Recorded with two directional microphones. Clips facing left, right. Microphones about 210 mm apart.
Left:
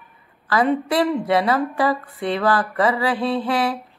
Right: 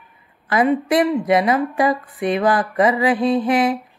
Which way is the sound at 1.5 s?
15° right (ahead or behind).